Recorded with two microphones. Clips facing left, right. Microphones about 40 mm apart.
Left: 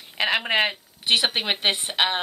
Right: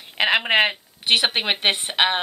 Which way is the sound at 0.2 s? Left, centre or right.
Right.